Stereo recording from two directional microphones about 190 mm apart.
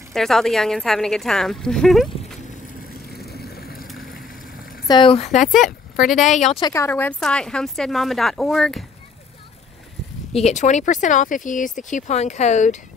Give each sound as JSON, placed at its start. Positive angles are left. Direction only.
{"t": 0.1, "sound": "speech", "side_deg": 0}
{"t": 3.3, "sound": "vehicle", "side_deg": 55}
{"t": 3.8, "sound": "a sound", "side_deg": 0}
{"t": 4.8, "sound": "speech", "side_deg": 25}
{"t": 5.5, "sound": "speech", "side_deg": 0}
{"t": 6.3, "sound": "speech", "side_deg": 35}
{"t": 6.6, "sound": "speech", "side_deg": 15}
{"t": 10.3, "sound": "speech", "side_deg": 35}